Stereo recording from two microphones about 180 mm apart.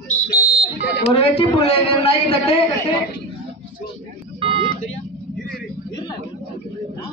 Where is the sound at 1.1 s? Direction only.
35° left (ahead or behind).